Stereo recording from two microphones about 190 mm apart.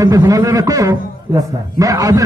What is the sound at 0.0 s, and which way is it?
A man's voice, 15° right (ahead or behind).